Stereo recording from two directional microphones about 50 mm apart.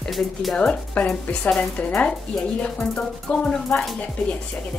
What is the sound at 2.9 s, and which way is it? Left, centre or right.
Speech, left.